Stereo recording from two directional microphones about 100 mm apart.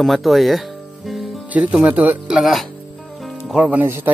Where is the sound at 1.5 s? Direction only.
15° right (ahead or behind).